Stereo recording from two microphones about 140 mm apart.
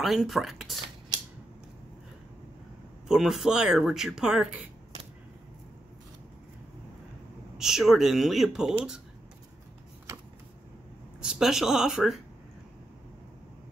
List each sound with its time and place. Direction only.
0.0 s speech: centre (ahead or behind)
1.1 s a sound: 25° right (ahead or behind)
3.1 s speech: centre (ahead or behind)
7.5 s speech: 5° right (ahead or behind)
11.1 s speech: 5° right (ahead or behind)